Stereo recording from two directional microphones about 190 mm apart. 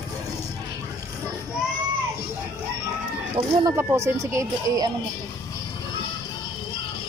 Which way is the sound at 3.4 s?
15° right (ahead or behind).